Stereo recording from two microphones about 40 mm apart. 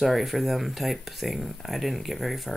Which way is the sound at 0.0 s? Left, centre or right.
Centre.